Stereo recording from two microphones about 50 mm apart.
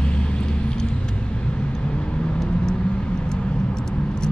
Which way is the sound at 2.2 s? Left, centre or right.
Centre.